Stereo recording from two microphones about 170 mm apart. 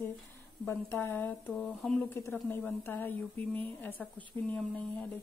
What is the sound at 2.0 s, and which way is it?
Speech, 15° left (ahead or behind).